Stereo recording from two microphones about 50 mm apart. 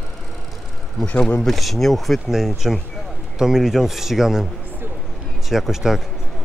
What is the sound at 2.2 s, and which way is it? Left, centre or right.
Speech, centre.